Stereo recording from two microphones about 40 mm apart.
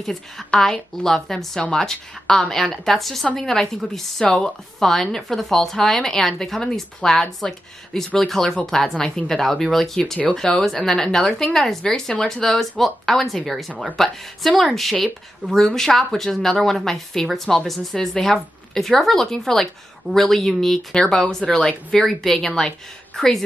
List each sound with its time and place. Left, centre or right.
0.0 s a woman's voice: centre
20.9 s a woman's voice: centre
23.2 s a woman's voice: centre